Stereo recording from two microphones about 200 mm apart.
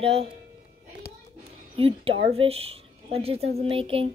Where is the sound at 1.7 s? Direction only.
30° right (ahead or behind).